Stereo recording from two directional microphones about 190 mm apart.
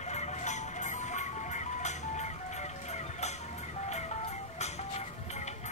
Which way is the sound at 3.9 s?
35° left (ahead or behind).